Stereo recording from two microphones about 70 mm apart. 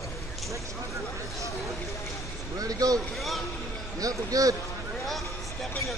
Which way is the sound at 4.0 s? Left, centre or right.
Right.